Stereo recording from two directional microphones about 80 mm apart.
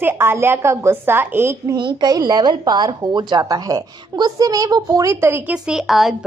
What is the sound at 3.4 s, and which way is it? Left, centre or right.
A woman's voice, right.